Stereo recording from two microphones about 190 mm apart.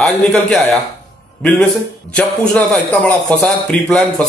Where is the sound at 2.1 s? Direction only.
5° left (ahead or behind).